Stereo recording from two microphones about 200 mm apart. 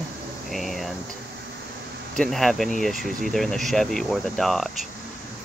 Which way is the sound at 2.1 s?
Centre (ahead or behind).